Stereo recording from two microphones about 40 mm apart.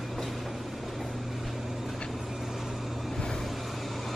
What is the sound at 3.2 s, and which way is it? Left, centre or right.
Vehicle, centre.